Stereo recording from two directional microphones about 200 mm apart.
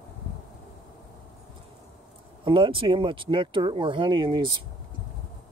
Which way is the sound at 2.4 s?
25° right (ahead or behind).